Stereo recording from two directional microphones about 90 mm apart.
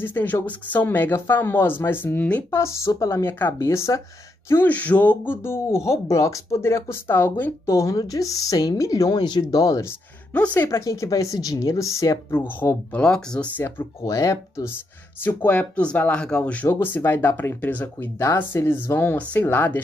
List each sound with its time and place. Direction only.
0.0 s speech: 20° left (ahead or behind)
2.6 s speech: 35° left (ahead or behind)
4.5 s speech: 20° left (ahead or behind)
7.7 s speech: 40° left (ahead or behind)
10.3 s speech: 15° left (ahead or behind)
10.7 s speech: 35° left (ahead or behind)
13.0 s speech: 10° left (ahead or behind)
13.6 s speech: 25° left (ahead or behind)
14.0 s speech: 35° left (ahead or behind)
15.2 s speech: 15° left (ahead or behind)
16.6 s speech: 25° left (ahead or behind)